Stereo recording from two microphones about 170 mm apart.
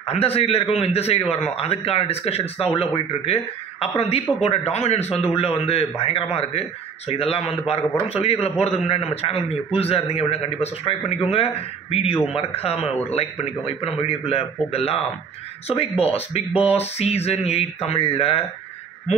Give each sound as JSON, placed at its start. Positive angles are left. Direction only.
{"t": 0.0, "sound": "a man's voice", "side_deg": 35}
{"t": 4.5, "sound": "a man's voice", "side_deg": 40}